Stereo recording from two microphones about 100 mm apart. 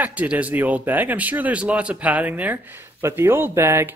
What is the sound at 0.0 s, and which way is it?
Speech, 15° right (ahead or behind).